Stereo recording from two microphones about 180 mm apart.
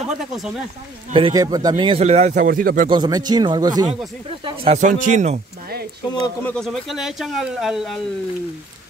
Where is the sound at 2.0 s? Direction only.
40° right (ahead or behind).